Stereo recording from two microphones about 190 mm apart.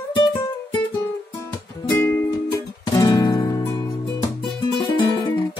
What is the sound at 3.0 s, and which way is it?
Guitar, 20° left (ahead or behind).